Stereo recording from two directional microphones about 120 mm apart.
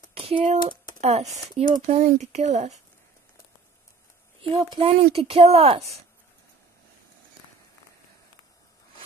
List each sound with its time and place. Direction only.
0.1 s a sound: 55° right (ahead or behind)
0.4 s speech: 80° right
4.4 s speech: 45° right (ahead or behind)